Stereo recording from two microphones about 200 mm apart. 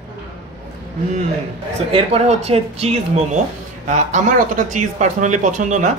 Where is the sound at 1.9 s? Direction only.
30° right (ahead or behind).